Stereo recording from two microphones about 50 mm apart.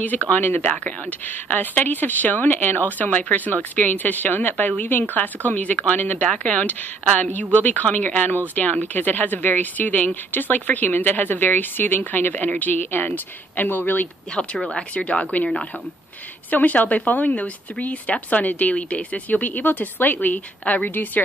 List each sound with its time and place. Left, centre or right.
0.3 s a woman's voice: left
14.8 s a woman's voice: left
16.4 s speech: left